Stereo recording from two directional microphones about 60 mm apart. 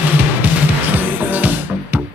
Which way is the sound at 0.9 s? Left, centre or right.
Right.